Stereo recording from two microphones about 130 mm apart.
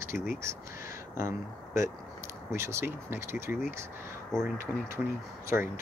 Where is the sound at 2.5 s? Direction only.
20° right (ahead or behind).